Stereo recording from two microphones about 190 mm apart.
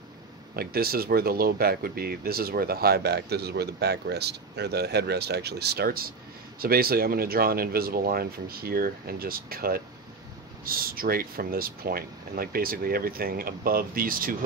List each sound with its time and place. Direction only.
0.6 s speech: 55° right (ahead or behind)